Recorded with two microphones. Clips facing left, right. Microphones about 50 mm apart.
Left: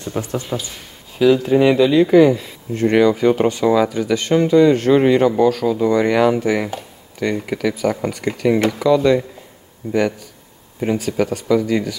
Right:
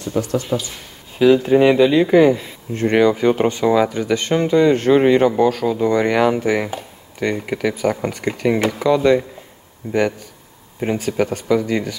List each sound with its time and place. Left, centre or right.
0.0 s speech: left
1.2 s speech: right